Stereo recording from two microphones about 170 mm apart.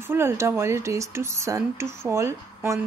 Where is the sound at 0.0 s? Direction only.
15° right (ahead or behind).